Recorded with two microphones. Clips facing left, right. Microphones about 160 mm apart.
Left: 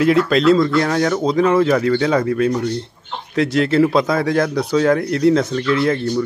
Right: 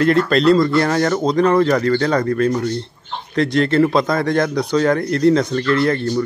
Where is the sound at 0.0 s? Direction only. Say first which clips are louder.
Even; 5° left (ahead or behind).